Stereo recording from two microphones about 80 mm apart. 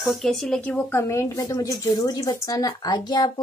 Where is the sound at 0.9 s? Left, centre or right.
Left.